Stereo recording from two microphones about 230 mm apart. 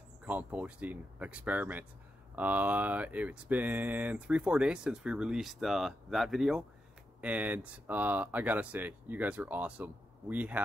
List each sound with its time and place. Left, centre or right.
0.2 s speech: centre